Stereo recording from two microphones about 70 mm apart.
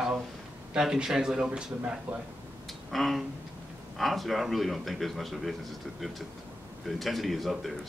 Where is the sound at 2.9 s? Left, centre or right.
Centre.